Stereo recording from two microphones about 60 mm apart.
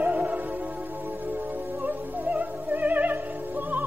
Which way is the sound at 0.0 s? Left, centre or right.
Right.